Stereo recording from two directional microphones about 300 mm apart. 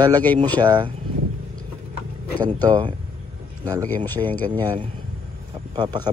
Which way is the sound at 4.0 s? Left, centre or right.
Centre.